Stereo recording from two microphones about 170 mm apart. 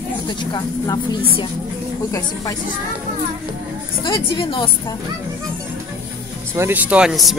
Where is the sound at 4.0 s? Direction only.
30° left (ahead or behind).